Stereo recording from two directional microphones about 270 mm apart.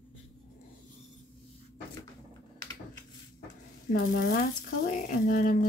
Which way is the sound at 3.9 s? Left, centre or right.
Left.